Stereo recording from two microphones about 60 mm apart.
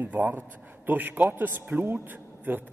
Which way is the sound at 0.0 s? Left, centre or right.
Right.